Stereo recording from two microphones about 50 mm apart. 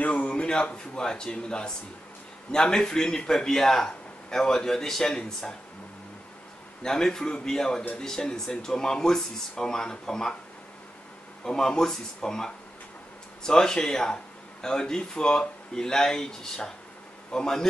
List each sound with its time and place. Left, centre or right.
0.0 s a sound: left
0.9 s speech: centre
6.8 s speech: centre
11.4 s speech: centre